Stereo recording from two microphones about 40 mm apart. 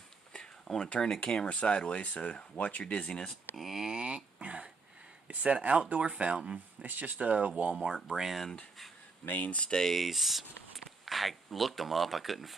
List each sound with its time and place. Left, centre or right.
0.3 s a sound: centre
1.0 s speech: centre
3.5 s speech: centre
3.9 s a sound: right
5.3 s speech: right
6.8 s speech: right
7.7 s speech: centre
9.2 s speech: left
9.8 s speech: centre